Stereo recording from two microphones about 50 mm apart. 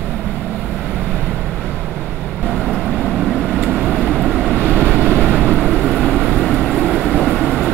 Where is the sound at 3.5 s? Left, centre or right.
Right.